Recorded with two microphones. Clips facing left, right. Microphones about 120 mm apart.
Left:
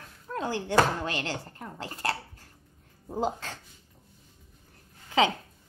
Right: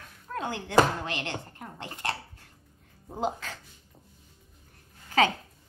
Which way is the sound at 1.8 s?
35° left (ahead or behind).